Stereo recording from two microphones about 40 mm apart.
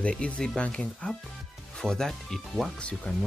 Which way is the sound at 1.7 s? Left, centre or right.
Centre.